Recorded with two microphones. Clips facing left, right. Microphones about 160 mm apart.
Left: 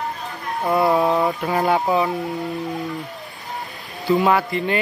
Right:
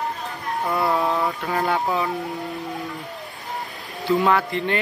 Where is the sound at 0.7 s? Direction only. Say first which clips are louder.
Left 5 dB; 20° left (ahead or behind).